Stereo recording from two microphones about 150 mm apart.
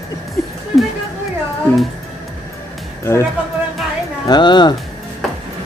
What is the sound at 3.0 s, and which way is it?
Speech, 20° left (ahead or behind).